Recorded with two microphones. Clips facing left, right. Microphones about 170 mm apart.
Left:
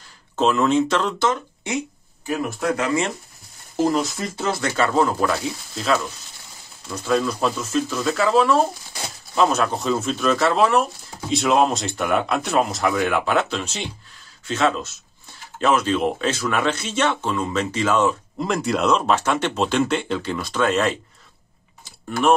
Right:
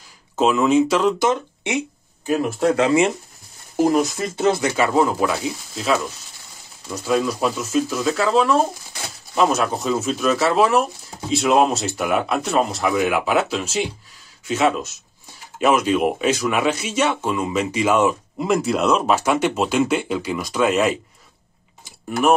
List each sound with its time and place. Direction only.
0.4 s speech: 10° right (ahead or behind)
1.3 s speech: 20° right (ahead or behind)
3.7 s speech: 15° right (ahead or behind)
7.1 s speech: 5° right (ahead or behind)